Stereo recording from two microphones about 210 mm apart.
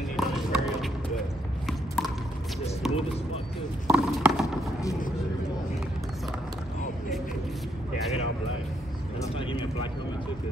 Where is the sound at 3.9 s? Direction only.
5° right (ahead or behind).